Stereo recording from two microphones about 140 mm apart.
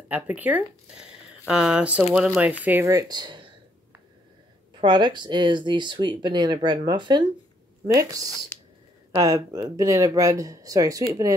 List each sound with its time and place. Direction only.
0.1 s speech: 10° right (ahead or behind); by 3.4 s 35° right (ahead or behind)
4.7 s speech: 30° right (ahead or behind)